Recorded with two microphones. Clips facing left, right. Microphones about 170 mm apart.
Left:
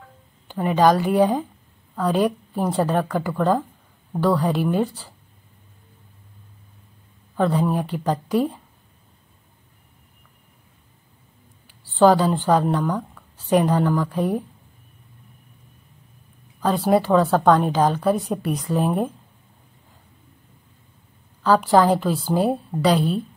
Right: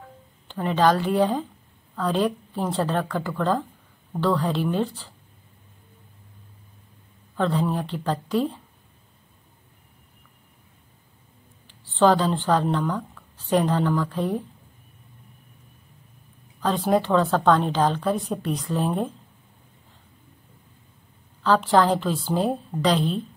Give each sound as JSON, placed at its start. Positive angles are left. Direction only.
{"t": 0.5, "sound": "a woman's voice", "side_deg": 10}
{"t": 7.3, "sound": "a woman's voice", "side_deg": 10}
{"t": 11.6, "sound": "a woman's voice", "side_deg": 10}
{"t": 16.6, "sound": "a woman's voice", "side_deg": 10}
{"t": 21.4, "sound": "a woman's voice", "side_deg": 10}